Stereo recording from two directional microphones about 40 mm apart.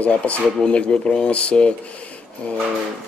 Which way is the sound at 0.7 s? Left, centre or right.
Left.